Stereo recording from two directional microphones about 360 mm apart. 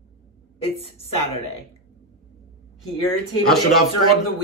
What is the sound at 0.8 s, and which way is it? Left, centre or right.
Speech, centre.